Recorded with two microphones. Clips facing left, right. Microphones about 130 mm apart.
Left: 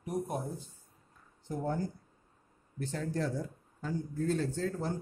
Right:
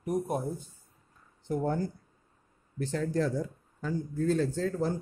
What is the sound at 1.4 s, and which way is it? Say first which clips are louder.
Speech: right 4 dB; 70° right (ahead or behind).